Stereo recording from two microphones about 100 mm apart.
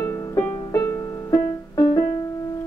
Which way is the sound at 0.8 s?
25° left (ahead or behind).